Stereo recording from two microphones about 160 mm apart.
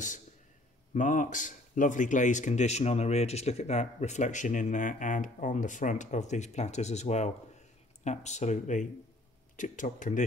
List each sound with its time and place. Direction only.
0.9 s speech: 50° left (ahead or behind)